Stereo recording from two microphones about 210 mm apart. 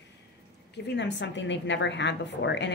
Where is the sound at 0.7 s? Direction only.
55° left (ahead or behind).